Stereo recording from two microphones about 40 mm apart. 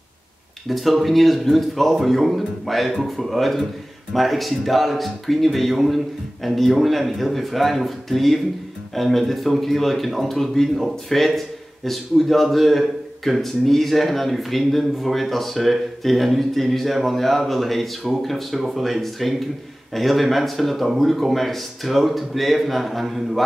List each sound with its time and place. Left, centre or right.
0.7 s a man's voice: centre